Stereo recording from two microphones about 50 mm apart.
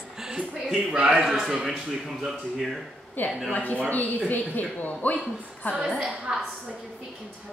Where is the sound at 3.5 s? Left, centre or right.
Left.